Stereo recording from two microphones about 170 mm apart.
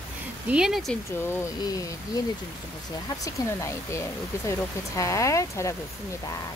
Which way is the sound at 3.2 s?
20° left (ahead or behind).